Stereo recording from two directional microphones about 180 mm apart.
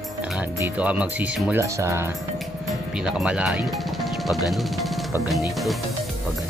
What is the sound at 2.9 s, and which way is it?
Speech, 5° right (ahead or behind).